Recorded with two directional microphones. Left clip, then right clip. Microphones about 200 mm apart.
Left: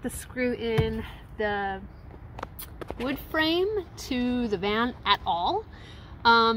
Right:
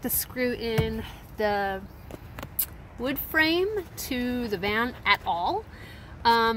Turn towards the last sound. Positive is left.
turn(degrees=10)  # may be behind; listen again after turning